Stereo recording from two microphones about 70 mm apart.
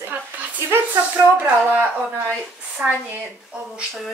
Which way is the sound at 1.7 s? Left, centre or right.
Centre.